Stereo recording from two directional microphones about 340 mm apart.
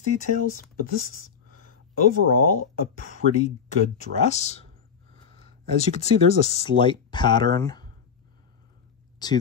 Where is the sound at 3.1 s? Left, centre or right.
Centre.